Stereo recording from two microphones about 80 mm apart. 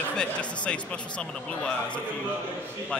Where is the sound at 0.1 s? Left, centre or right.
Centre.